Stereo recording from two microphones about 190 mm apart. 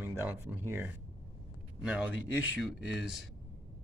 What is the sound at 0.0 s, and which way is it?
Speech, 10° right (ahead or behind).